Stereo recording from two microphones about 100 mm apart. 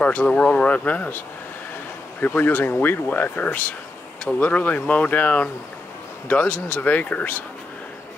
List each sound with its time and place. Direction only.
0.0 s speech: 15° left (ahead or behind)
2.2 s speech: 15° left (ahead or behind)